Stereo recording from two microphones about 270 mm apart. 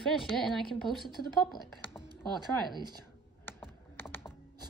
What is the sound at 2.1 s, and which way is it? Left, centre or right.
Speech, centre.